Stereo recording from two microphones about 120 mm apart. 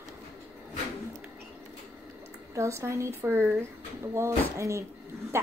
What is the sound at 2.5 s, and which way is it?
Speech, 25° right (ahead or behind).